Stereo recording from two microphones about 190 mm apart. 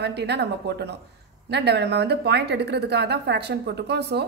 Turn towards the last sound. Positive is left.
turn(degrees=-60)  # may be behind; listen again after turning